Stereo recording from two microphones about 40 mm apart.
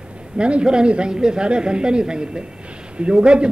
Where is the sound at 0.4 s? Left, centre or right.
Right.